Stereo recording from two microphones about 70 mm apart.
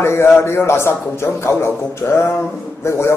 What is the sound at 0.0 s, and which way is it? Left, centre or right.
A man's voice, left.